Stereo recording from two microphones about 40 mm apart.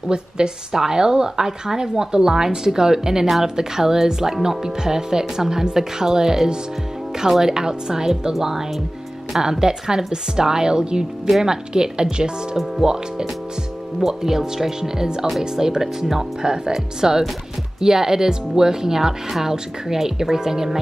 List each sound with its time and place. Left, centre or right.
0.1 s speech: centre
11.2 s speech: centre
11.7 s speech: centre